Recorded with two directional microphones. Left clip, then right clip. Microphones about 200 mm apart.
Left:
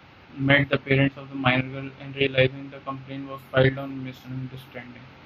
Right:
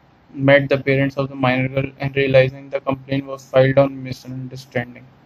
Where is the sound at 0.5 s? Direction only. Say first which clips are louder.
Right 7 dB; 15° right (ahead or behind).